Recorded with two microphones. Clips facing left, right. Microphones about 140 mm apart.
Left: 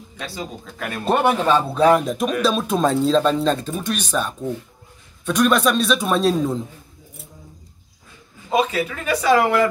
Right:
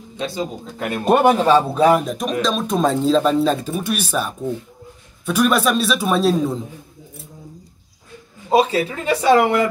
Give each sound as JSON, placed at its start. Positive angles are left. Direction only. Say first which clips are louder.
{"t": 0.2, "sound": "speech", "louder": "right 6 dB", "side_deg": -20}
{"t": 1.4, "sound": "speech", "louder": "right 2 dB", "side_deg": -10}
{"t": 8.5, "sound": "speech", "louder": "right 4 dB", "side_deg": -30}